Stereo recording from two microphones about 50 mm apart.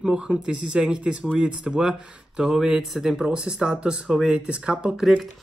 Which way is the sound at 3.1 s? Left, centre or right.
Centre.